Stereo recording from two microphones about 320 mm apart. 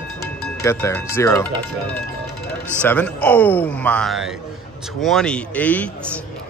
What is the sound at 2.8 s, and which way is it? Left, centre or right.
Speech, centre.